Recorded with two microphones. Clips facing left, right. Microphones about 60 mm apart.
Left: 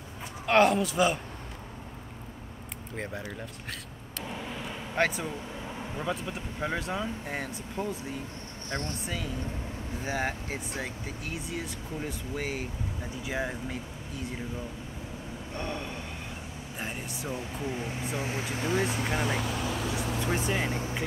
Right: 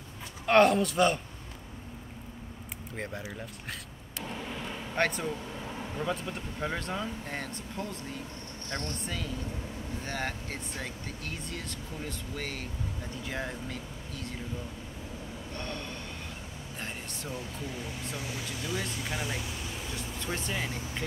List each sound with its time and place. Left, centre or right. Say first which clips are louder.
0.5 s speech: even; centre
3.0 s speech: left 1 dB; centre
9.0 s speech: left 2 dB; centre
15.5 s vehicle: left 4 dB; centre
16.8 s speech: left 4 dB; centre
17.3 s speech: left 4 dB; left
19.0 s speech: left 6 dB; left
19.5 s vehicle: left 7 dB; left
20.4 s speech: left 5 dB; centre